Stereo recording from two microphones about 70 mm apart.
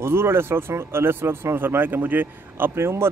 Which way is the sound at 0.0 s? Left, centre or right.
Right.